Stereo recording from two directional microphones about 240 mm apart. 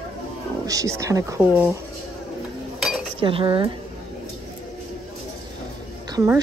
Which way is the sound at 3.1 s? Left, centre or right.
Right.